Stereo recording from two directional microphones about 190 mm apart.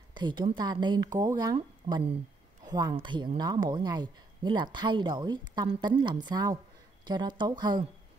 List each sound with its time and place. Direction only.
0.1 s speech: 25° right (ahead or behind)